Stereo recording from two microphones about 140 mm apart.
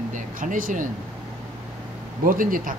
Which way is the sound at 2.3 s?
80° right.